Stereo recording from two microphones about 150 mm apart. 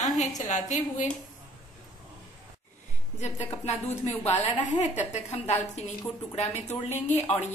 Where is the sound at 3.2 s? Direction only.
45° left (ahead or behind).